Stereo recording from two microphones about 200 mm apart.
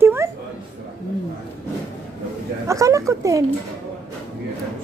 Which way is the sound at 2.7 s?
15° right (ahead or behind).